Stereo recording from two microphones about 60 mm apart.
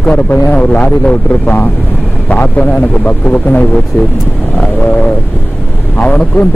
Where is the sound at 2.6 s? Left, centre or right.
Left.